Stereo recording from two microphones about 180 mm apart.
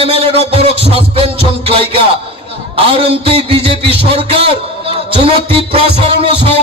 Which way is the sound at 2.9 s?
30° right (ahead or behind).